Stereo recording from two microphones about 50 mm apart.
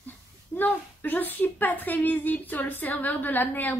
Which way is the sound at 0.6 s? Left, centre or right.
Left.